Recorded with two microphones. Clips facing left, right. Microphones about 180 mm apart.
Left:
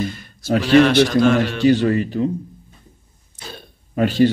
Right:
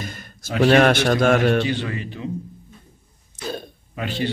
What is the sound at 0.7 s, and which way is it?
Speech, 50° right (ahead or behind).